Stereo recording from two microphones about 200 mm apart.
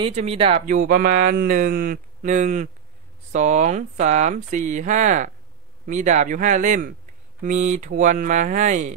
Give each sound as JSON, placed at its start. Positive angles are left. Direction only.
{"t": 0.0, "sound": "speech", "side_deg": -30}
{"t": 0.7, "sound": "speech", "side_deg": -45}